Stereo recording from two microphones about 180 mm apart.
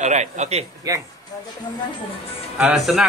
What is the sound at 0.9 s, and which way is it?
Speech, 20° right (ahead or behind).